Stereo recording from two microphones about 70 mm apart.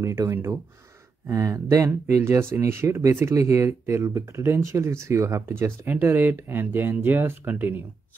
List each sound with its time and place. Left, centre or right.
0.3 s speech: right
1.3 s speech: right
2.2 s speech: right